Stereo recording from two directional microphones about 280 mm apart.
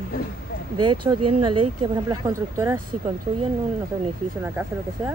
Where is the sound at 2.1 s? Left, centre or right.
Centre.